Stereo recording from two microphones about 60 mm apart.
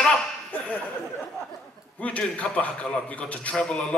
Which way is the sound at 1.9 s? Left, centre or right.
Left.